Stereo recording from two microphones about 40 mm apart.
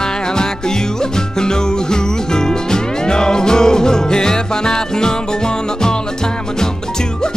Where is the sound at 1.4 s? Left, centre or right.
Centre.